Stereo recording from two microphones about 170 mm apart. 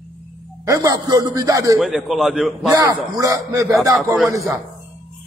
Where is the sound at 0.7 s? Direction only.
20° right (ahead or behind).